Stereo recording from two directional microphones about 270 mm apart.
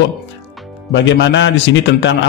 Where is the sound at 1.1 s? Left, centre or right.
Left.